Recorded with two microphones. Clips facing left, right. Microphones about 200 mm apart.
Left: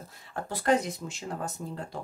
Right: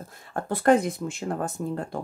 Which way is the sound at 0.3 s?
55° right (ahead or behind).